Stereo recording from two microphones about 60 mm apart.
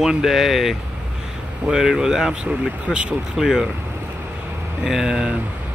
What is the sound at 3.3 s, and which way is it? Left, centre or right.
Speech, centre.